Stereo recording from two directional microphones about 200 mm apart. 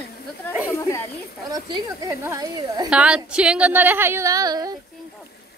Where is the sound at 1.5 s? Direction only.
20° right (ahead or behind).